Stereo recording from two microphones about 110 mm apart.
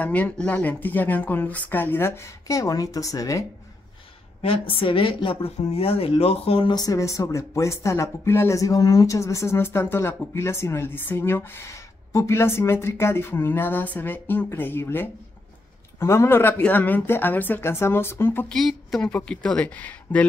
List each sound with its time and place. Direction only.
0.0 s a woman's voice: 15° left (ahead or behind); by 3.4 s 30° left (ahead or behind)
4.4 s a woman's voice: 55° left (ahead or behind)
6.7 s speech: 35° left (ahead or behind)
18.5 s a woman's voice: centre (ahead or behind)